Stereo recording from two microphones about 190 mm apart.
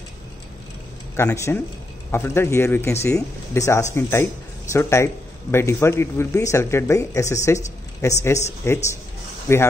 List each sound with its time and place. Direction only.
1.1 s speech: 15° left (ahead or behind)